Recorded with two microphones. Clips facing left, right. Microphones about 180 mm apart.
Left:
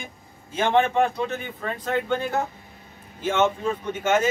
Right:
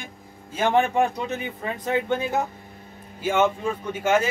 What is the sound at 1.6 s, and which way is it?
Speech, 15° right (ahead or behind).